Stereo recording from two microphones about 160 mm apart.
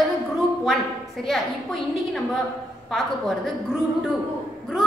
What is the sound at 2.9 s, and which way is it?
A woman's voice, centre (ahead or behind).